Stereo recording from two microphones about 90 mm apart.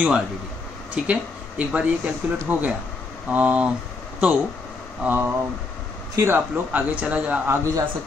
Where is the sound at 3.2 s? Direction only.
15° right (ahead or behind).